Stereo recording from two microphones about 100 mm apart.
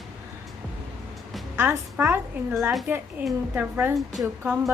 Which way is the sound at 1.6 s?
20° right (ahead or behind).